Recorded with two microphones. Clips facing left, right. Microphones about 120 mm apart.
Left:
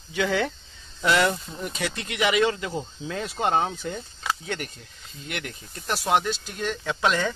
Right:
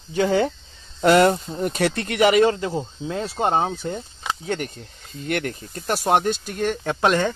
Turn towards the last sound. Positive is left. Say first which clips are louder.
# right 4 dB
turn(degrees=-50)  # may be behind; listen again after turning